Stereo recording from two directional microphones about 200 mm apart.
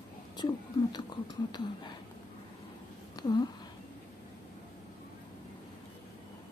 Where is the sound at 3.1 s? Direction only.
20° left (ahead or behind).